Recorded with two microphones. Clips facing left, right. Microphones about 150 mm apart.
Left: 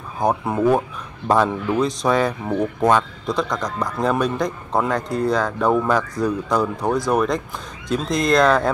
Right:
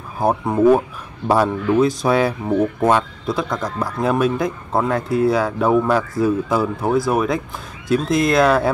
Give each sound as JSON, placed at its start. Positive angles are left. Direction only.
{"t": 0.2, "sound": "speech", "side_deg": -5}